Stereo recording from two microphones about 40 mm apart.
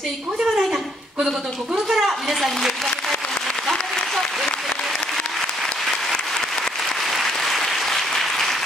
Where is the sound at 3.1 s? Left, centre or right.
Centre.